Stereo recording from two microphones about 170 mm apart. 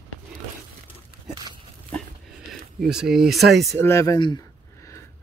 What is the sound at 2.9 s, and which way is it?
Speech, 5° right (ahead or behind).